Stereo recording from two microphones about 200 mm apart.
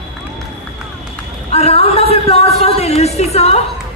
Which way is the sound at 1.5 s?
30° left (ahead or behind).